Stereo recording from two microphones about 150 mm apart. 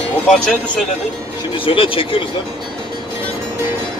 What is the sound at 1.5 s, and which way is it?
Speech, 35° left (ahead or behind).